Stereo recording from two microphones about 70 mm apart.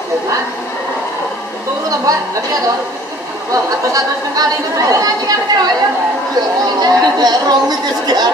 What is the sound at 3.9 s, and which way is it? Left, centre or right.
Speech, right.